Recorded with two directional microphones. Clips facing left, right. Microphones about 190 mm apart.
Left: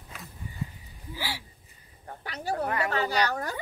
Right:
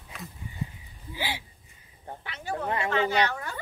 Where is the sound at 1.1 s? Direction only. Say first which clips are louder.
Right 3 dB; 20° right (ahead or behind).